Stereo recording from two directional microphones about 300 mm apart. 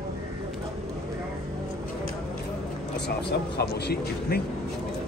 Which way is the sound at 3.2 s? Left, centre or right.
Left.